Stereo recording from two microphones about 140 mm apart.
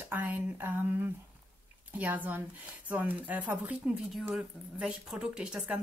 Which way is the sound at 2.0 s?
10° right (ahead or behind).